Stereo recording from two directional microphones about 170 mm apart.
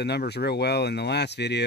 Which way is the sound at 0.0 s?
75° left (ahead or behind).